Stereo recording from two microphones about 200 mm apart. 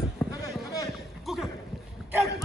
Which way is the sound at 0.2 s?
10° left (ahead or behind).